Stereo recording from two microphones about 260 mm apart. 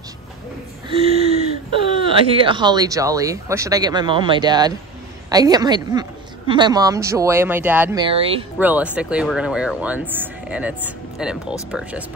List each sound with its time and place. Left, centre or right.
0.8 s a woman's voice: right
8.5 s speech: centre